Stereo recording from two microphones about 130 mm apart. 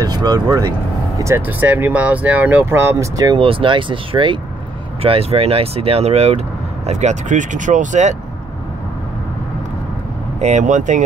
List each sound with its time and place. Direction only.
0.0 s speech: 30° right (ahead or behind)
1.2 s speech: 15° right (ahead or behind)
3.3 s speech: 45° right (ahead or behind); by 8.2 s 65° right (ahead or behind)
10.4 s speech: 70° right (ahead or behind)